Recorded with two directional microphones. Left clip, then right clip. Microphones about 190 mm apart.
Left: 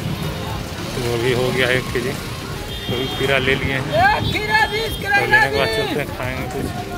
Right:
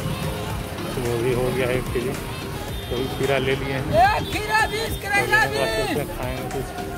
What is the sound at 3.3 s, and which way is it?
Speech, 10° right (ahead or behind).